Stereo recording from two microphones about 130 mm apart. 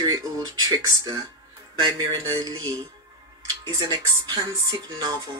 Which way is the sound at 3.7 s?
30° right (ahead or behind).